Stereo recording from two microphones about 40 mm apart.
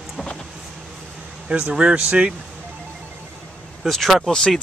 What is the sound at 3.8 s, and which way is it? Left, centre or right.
Speech, centre.